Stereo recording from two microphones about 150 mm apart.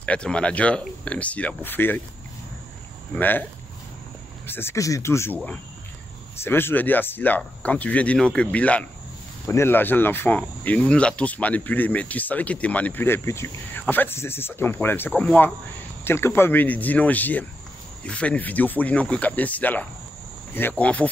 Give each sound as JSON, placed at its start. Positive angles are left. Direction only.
{"t": 0.0, "sound": "cricket", "side_deg": 10}
{"t": 3.2, "sound": "cricket", "side_deg": 10}
{"t": 4.5, "sound": "cricket", "side_deg": 15}